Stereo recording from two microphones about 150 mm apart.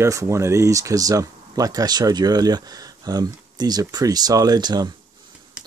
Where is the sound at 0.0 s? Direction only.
20° right (ahead or behind).